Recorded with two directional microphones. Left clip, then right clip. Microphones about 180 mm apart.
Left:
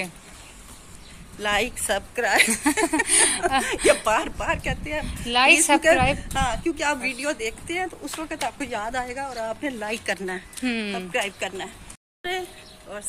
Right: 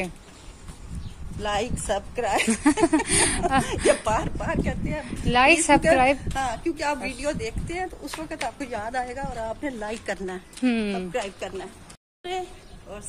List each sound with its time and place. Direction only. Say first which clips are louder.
1.4 s speech: left 3 dB; centre (ahead or behind)
2.5 s speech: right 1 dB; 50° right (ahead or behind)
3.6 s a woman's voice: left 2 dB; centre (ahead or behind); by 5.0 s 15° left (ahead or behind)
5.0 s speech: even; 50° right (ahead or behind)
6.3 s speech: left 2 dB; 10° left (ahead or behind)
10.6 s speech: right 3 dB; 45° right (ahead or behind)
11.1 s a woman's voice: left 3 dB; 5° left (ahead or behind)